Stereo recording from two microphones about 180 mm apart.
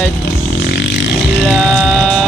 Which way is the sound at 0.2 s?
65° left (ahead or behind).